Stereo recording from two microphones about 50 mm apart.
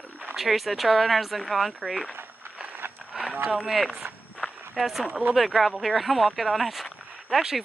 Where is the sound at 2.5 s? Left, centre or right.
Right.